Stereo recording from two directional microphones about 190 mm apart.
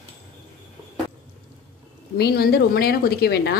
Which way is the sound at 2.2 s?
55° left (ahead or behind).